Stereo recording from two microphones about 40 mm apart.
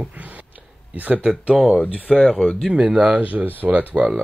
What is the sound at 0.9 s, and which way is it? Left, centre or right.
Speech, right.